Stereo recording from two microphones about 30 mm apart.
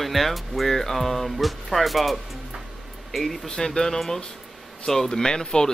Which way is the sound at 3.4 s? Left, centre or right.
Centre.